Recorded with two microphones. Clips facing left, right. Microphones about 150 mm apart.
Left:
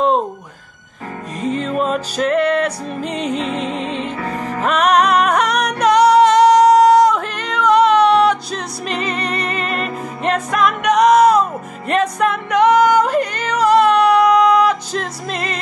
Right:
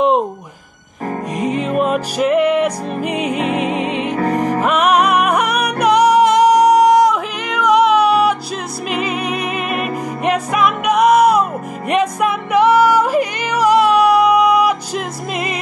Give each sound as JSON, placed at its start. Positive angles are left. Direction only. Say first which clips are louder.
{"t": 1.4, "sound": "music", "louder": "right 1 dB", "side_deg": -15}
{"t": 3.3, "sound": "music", "louder": "right 3 dB", "side_deg": -60}
{"t": 4.1, "sound": "music", "louder": "right 7 dB", "side_deg": -45}
{"t": 4.6, "sound": "music", "louder": "left 2 dB", "side_deg": -10}